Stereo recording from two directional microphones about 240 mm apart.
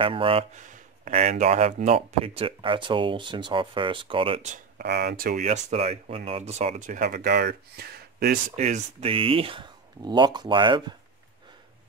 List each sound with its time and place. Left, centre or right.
0.0 s speech: right
4.8 s speech: right
8.5 s speech: right